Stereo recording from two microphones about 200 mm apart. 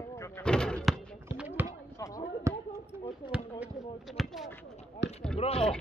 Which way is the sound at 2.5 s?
15° right (ahead or behind).